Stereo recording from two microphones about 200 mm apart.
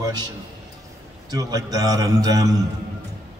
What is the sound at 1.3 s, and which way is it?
A man's voice, 20° right (ahead or behind).